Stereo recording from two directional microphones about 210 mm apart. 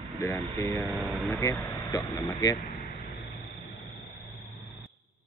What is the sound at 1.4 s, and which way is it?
Speech, 15° left (ahead or behind).